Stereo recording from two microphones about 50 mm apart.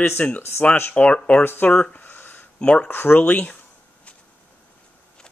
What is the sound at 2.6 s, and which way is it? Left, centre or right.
Speech, centre.